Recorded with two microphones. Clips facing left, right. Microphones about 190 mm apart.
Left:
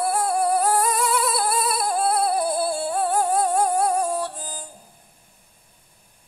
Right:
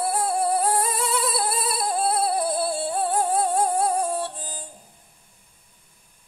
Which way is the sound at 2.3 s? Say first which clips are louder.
Left 1 dB; 25° right (ahead or behind).